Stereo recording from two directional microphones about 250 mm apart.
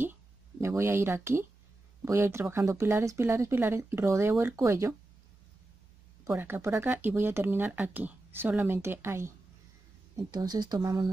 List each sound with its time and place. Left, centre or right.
0.0 s a sound: centre
2.0 s speech: centre
6.2 s speech: centre